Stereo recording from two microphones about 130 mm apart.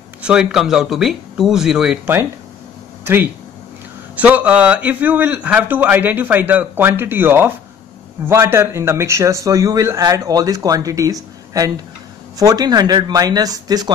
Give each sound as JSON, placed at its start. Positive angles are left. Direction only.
{"t": 0.2, "sound": "speech", "side_deg": -5}
{"t": 4.2, "sound": "a man's voice", "side_deg": -10}